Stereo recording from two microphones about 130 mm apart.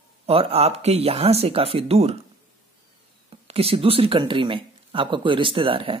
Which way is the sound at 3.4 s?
50° right (ahead or behind).